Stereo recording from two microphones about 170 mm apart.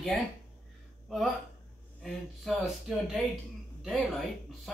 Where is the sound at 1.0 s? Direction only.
Centre (ahead or behind).